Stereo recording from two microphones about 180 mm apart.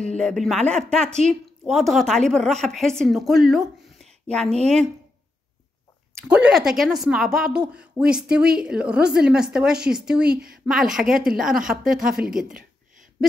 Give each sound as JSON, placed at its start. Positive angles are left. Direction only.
{"t": 0.2, "sound": "speech", "side_deg": 5}
{"t": 6.2, "sound": "speech", "side_deg": -5}